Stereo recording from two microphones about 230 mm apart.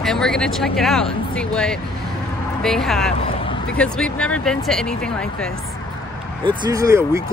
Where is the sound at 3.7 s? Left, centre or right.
Centre.